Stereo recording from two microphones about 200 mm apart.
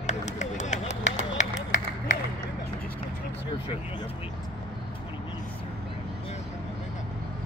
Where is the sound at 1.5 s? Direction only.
65° left (ahead or behind).